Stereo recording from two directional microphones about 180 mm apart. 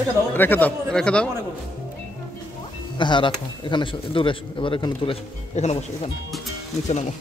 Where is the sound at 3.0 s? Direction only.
25° left (ahead or behind).